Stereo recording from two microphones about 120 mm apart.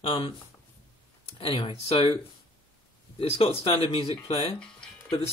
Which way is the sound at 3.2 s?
50° left (ahead or behind).